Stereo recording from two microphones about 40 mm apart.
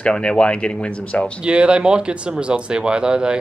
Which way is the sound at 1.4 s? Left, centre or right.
Right.